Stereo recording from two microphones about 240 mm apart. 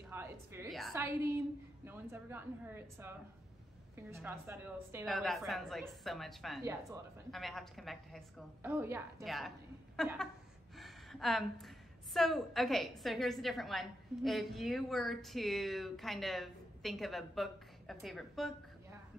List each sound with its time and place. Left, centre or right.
0.1 s a sound: centre
0.9 s a woman's voice: centre
5.0 s a woman's voice: centre
6.6 s speech: centre
7.2 s a woman's voice: centre